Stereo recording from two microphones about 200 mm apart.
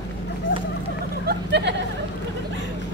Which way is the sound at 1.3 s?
55° right (ahead or behind).